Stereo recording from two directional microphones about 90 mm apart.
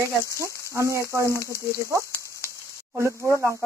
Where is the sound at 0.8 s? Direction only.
35° right (ahead or behind).